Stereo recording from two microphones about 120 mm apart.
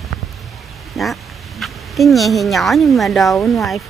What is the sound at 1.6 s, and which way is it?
A woman's voice, centre (ahead or behind).